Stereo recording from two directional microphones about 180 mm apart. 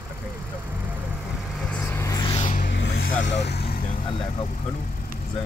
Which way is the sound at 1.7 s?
10° left (ahead or behind).